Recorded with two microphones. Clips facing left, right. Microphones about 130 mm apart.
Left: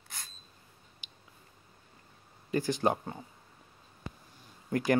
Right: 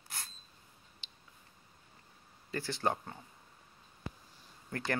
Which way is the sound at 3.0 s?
30° left (ahead or behind).